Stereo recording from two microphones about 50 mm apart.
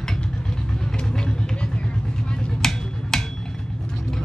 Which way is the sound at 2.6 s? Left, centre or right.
Centre.